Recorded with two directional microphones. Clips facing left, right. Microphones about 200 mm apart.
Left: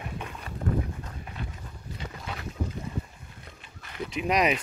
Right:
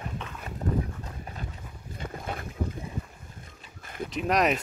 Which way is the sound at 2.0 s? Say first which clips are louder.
Right 4 dB; 50° right (ahead or behind).